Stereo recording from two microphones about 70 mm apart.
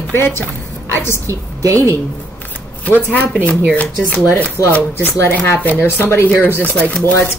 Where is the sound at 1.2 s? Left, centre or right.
Right.